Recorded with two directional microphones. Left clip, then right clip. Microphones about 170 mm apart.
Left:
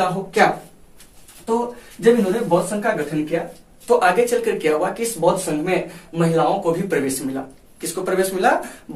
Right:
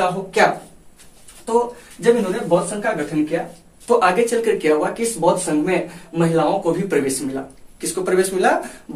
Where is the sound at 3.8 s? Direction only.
10° right (ahead or behind).